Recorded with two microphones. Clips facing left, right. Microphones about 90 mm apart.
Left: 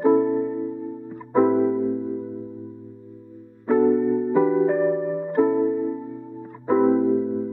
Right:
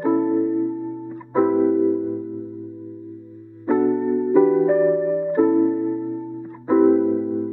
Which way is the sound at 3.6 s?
Centre (ahead or behind).